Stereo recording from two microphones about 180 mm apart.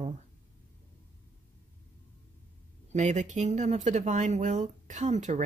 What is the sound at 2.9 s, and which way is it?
Speech, 40° right (ahead or behind).